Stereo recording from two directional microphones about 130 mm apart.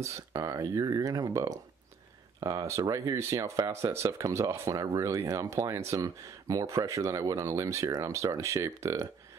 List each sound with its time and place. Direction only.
0.0 s speech: 25° right (ahead or behind)